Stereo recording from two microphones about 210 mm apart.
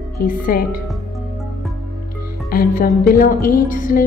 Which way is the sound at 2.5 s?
45° left (ahead or behind).